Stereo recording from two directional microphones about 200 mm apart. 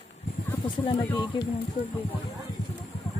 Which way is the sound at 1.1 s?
20° left (ahead or behind).